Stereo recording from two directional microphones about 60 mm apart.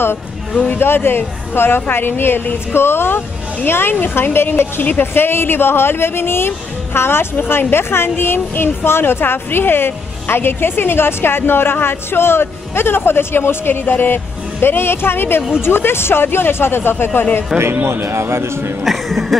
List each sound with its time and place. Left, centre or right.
0.7 s a woman's voice: left
17.8 s a man's voice: right
18.9 s a sound: centre